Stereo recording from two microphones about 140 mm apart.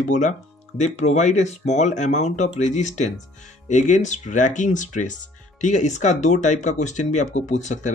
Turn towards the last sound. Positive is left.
turn(degrees=55)  # may be behind; listen again after turning